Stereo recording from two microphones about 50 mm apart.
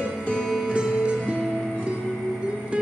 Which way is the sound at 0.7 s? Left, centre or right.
Centre.